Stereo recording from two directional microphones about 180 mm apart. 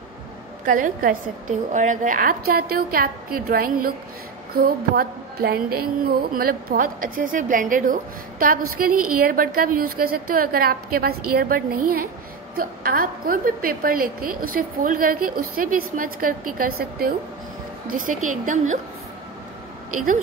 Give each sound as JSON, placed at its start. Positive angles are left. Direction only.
{"t": 0.7, "sound": "a woman's voice", "side_deg": -50}
{"t": 4.6, "sound": "a sound", "side_deg": -55}
{"t": 12.5, "sound": "a woman's voice", "side_deg": -55}